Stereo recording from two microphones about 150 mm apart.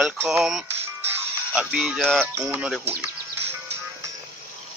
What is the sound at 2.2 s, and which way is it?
Speech, 10° right (ahead or behind).